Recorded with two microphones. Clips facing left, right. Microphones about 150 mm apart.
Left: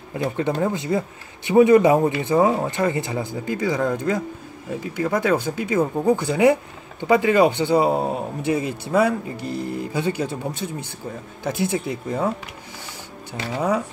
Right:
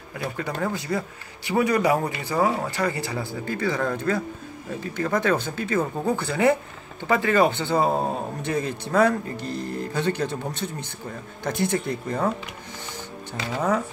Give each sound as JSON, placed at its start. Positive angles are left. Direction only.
{"t": 0.1, "sound": "speech", "side_deg": 25}
{"t": 13.3, "sound": "speech", "side_deg": 10}